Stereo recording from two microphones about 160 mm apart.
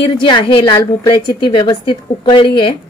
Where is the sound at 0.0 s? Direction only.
30° left (ahead or behind).